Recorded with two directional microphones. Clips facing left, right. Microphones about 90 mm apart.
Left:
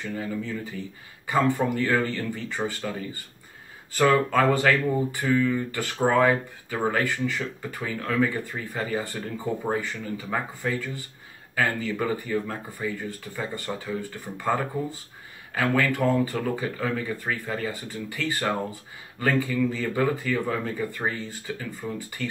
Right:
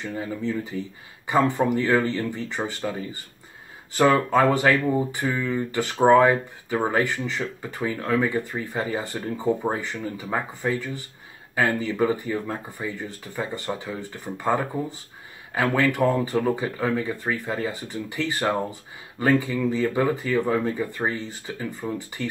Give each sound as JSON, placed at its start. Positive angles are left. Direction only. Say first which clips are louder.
{"t": 0.2, "sound": "speech", "louder": "right 6 dB", "side_deg": -20}